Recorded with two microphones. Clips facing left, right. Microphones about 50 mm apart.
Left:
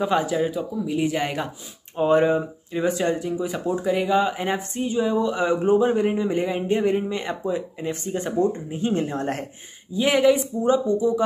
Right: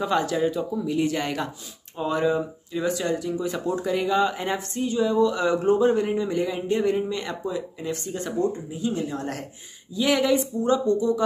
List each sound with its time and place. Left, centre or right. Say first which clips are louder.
0.0 s speech: left 1 dB; centre
2.0 s speech: left 5 dB; left
8.7 s speech: left 3 dB; left
9.9 s speech: left 3 dB; left